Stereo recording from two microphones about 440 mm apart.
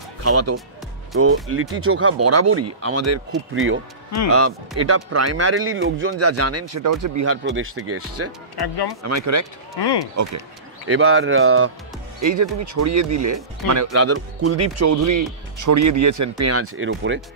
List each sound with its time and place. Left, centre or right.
0.2 s speech: right
7.2 s speech: right
9.8 s speech: left
10.9 s a man's voice: right
12.2 s speech: right